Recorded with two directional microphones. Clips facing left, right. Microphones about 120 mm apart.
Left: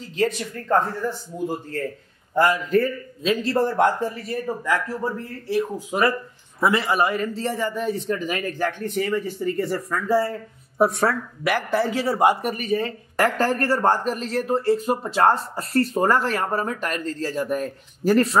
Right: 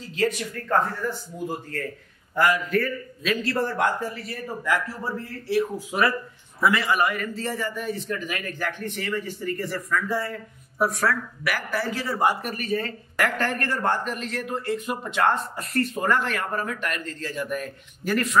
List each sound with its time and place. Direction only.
2.3 s a man's voice: 30° left (ahead or behind)
6.6 s a man's voice: 30° left (ahead or behind)
13.2 s speech: 35° left (ahead or behind)